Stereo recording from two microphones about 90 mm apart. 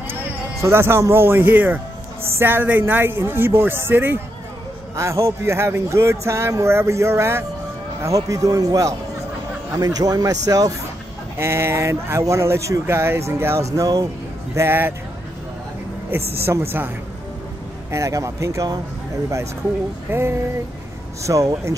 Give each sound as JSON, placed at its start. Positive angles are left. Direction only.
{"t": 0.1, "sound": "a man's voice", "side_deg": -25}
{"t": 11.3, "sound": "speech", "side_deg": -30}
{"t": 14.5, "sound": "speech", "side_deg": -25}
{"t": 16.1, "sound": "speech", "side_deg": -25}
{"t": 17.9, "sound": "speech", "side_deg": -35}
{"t": 20.1, "sound": "speech", "side_deg": -25}
{"t": 21.2, "sound": "speech", "side_deg": -40}